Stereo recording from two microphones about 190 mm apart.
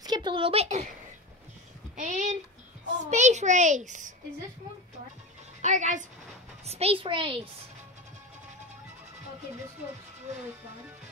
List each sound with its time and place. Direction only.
0.0 s speech: 20° right (ahead or behind)
2.0 s a sound: 40° right (ahead or behind)
3.1 s a child's voice: 40° right (ahead or behind)
5.6 s a child's voice: 40° right (ahead or behind)